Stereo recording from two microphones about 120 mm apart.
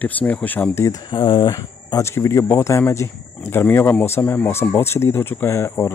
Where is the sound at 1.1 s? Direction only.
40° left (ahead or behind).